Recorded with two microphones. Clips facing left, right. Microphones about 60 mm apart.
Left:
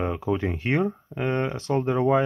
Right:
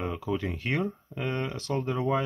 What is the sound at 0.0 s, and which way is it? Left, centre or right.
Speech, left.